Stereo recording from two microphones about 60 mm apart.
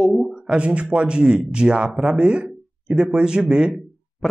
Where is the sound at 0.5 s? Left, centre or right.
Centre.